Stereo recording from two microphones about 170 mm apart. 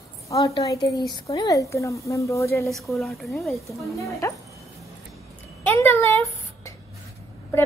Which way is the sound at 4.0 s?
20° left (ahead or behind).